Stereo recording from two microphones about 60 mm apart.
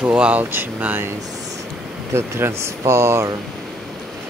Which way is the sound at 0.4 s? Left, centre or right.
Right.